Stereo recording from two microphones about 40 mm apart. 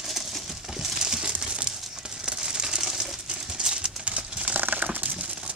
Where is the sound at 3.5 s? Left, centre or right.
Right.